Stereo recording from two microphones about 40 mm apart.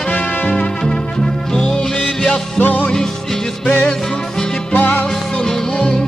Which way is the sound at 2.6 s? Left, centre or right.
Left.